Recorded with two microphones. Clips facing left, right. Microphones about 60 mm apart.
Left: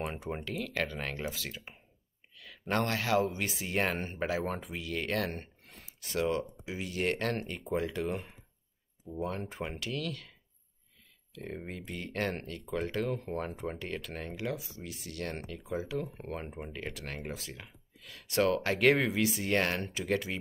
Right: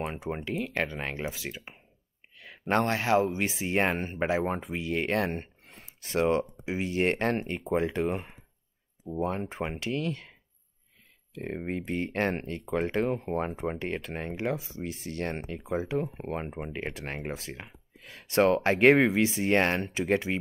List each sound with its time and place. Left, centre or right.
0.5 s speech: right
2.3 s a sound: right
2.7 s speech: right
11.3 s speech: right